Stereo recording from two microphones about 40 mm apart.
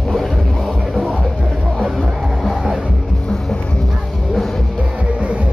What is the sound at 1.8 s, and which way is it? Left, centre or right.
Music, centre.